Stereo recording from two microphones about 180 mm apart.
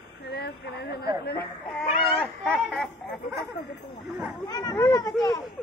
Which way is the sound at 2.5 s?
Centre (ahead or behind).